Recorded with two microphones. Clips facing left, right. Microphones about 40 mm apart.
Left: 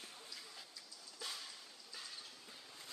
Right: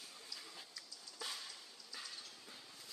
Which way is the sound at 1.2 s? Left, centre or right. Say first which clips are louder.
Right 1 dB; centre.